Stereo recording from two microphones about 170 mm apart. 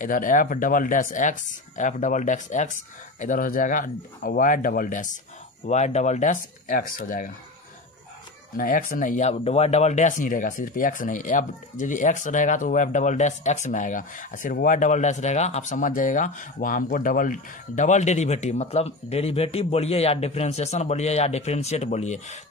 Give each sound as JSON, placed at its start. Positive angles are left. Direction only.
{"t": 0.0, "sound": "speech", "side_deg": 50}
{"t": 8.5, "sound": "speech", "side_deg": 55}